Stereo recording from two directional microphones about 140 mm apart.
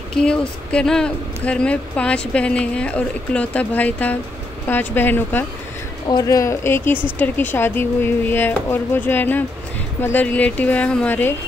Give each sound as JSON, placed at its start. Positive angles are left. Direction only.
{"t": 0.1, "sound": "speech", "side_deg": 5}
{"t": 6.0, "sound": "speech", "side_deg": 25}